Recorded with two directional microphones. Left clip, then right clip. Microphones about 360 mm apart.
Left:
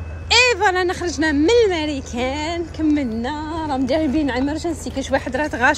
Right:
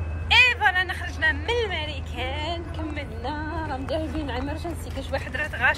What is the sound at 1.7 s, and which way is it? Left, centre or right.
Speech, left.